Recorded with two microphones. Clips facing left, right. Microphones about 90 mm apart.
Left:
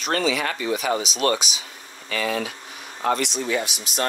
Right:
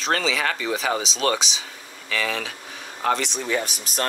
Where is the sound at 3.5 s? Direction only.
40° right (ahead or behind).